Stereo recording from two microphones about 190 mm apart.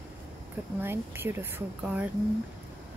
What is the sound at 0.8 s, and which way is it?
Speech, 10° right (ahead or behind).